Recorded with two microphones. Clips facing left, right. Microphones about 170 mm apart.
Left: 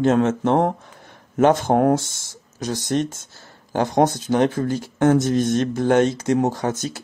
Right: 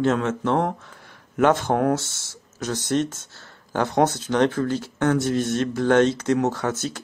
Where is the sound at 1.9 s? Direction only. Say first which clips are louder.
Left 4 dB; 15° left (ahead or behind).